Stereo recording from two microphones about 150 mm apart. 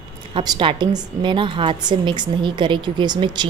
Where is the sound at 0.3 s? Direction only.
30° right (ahead or behind).